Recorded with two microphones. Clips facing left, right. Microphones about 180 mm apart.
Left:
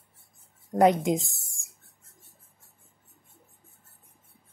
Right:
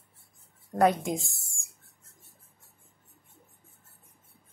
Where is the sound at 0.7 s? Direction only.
20° left (ahead or behind).